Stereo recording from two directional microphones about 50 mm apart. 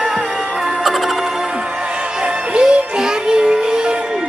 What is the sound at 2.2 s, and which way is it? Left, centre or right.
Music, centre.